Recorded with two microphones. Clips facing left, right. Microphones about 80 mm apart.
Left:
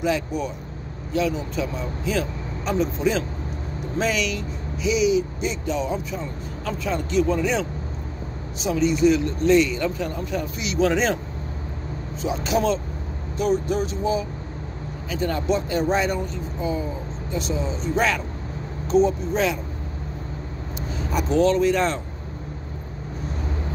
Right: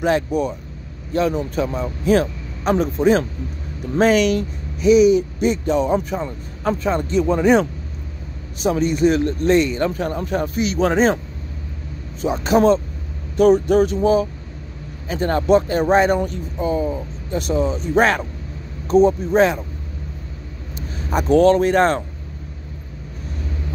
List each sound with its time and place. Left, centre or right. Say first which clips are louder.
0.0 s speech: right 5 dB; right
8.6 s speech: right 2 dB; right
12.2 s speech: right 7 dB; right
13.4 s vehicle: right 9 dB; right
15.0 s speech: right 6 dB; right
21.1 s speech: right 6 dB; right